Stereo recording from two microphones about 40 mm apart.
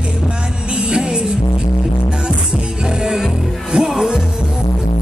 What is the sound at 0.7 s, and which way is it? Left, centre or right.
Music, centre.